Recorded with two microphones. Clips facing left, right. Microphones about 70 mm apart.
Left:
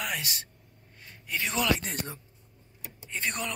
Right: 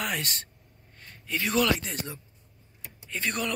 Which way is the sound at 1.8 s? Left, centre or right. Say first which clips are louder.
Even; left.